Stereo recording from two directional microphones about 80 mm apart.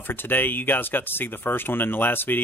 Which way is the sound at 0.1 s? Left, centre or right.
Left.